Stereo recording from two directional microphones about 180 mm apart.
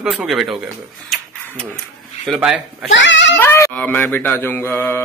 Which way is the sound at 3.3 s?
15° left (ahead or behind).